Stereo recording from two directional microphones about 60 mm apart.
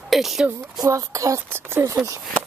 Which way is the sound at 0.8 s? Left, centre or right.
Right.